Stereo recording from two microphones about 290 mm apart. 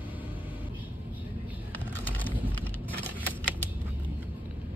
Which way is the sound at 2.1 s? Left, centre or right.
Centre.